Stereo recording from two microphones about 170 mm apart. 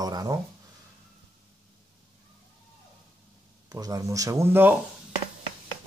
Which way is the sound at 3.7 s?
20° right (ahead or behind).